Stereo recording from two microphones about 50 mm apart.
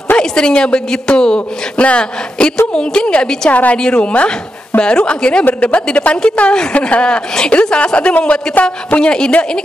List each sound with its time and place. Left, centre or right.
0.2 s speech: centre